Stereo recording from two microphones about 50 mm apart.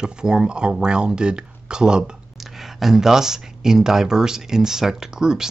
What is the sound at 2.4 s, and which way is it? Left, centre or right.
Speech, centre.